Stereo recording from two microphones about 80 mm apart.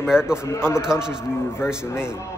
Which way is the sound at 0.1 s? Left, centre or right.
Centre.